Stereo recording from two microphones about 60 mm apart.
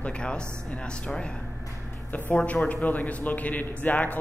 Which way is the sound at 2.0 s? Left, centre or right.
Left.